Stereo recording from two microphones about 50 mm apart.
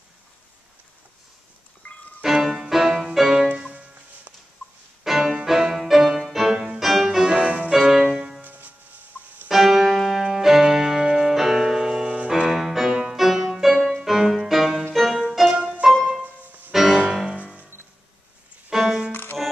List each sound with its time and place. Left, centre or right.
1.8 s music: left
2.2 s music: centre
5.0 s music: centre
7.2 s music: centre
7.7 s music: centre
8.4 s music: right
9.5 s music: centre
15.5 s music: centre
16.7 s music: centre
18.7 s music: centre